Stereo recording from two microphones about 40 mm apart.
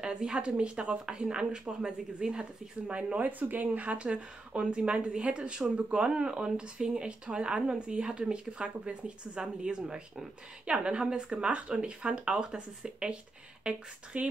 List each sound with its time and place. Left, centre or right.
0.0 s a woman's voice: right
3.2 s a woman's voice: right